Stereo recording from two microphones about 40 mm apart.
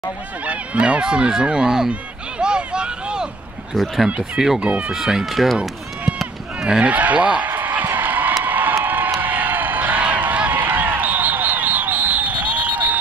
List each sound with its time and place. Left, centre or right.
0.5 s speech: right
3.7 s speech: centre
4.6 s speech: right
4.9 s speech: centre
6.6 s speech: right
6.9 s speech: right
7.4 s a sound: right
8.5 s crowd: right
10.0 s a sound: right
10.5 s basketball bounce: right